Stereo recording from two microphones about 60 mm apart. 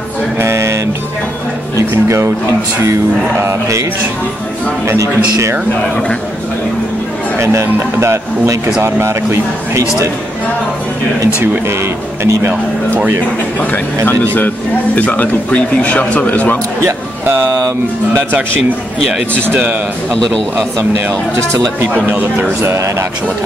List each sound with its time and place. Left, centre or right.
0.4 s music: right
1.8 s speech: right
7.3 s speech: right
12.2 s speech: right
15.0 s speech: left
16.8 s speech: right
22.6 s speech: right